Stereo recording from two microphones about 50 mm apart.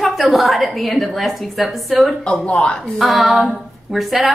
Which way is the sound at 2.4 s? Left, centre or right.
Left.